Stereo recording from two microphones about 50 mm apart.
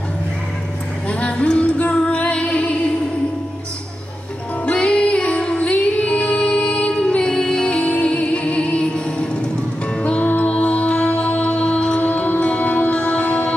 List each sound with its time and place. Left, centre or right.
1.0 s music: left
4.6 s music: left